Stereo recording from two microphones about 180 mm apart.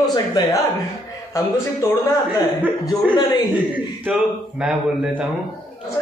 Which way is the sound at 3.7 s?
5° right (ahead or behind).